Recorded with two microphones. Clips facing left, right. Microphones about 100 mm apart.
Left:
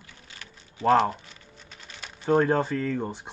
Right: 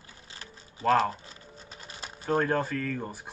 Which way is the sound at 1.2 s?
35° right (ahead or behind).